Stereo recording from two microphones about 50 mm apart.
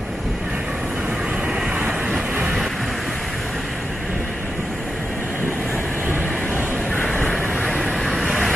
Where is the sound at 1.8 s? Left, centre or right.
Centre.